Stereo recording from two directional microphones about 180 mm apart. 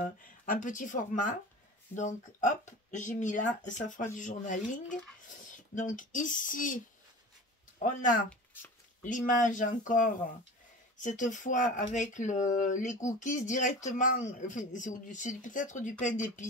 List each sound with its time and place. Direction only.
0.0 s speech: 45° left (ahead or behind)
9.0 s speech: 45° left (ahead or behind)